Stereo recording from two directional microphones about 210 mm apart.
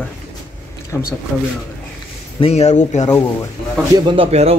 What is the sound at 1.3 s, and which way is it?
Speech, 10° left (ahead or behind).